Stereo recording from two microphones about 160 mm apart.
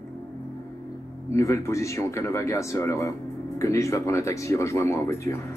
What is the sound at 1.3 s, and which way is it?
Speech, 20° left (ahead or behind).